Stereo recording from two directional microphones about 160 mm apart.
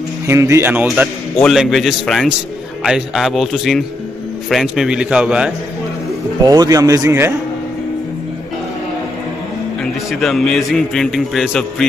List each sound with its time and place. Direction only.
0.3 s speech: 15° right (ahead or behind)
1.4 s a man's voice: centre (ahead or behind)
6.4 s a man's voice: 25° right (ahead or behind)
10.2 s a man's voice: centre (ahead or behind)